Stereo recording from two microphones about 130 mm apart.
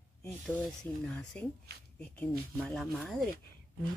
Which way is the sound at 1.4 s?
10° left (ahead or behind).